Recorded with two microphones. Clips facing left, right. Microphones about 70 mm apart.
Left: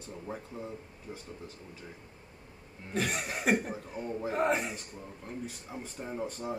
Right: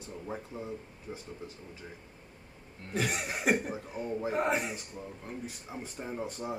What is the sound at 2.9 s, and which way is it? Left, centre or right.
Chuckle, centre.